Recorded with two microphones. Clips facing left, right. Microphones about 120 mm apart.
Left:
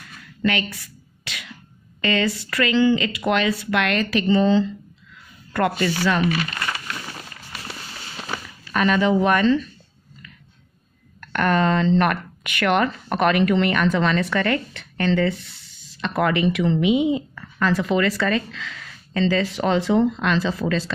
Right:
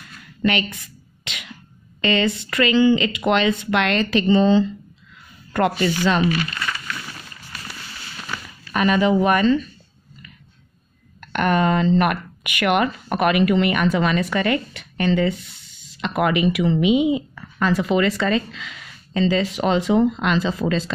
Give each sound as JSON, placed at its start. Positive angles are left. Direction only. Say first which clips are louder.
{"t": 0.4, "sound": "a sound", "louder": "right 2 dB", "side_deg": -20}
{"t": 2.0, "sound": "speech", "louder": "right 2 dB", "side_deg": -25}
{"t": 8.7, "sound": "speech", "louder": "right 1 dB", "side_deg": -10}
{"t": 11.1, "sound": "speech", "louder": "right 1 dB", "side_deg": -15}